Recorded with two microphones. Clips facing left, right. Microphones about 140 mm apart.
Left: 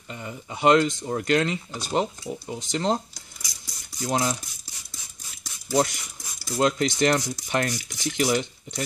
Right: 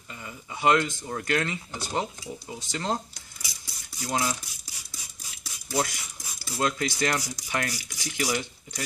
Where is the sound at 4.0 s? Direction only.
30° left (ahead or behind).